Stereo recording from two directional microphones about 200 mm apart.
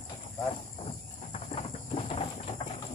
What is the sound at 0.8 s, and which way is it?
Clip-clop, 30° left (ahead or behind).